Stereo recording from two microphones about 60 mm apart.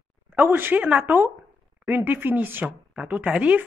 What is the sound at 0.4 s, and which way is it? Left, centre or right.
Speech, right.